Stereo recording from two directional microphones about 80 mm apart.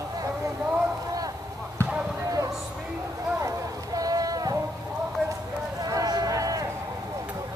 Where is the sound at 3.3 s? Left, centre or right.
Right.